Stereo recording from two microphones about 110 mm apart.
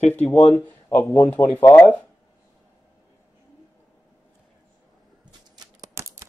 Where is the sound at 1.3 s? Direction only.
20° left (ahead or behind).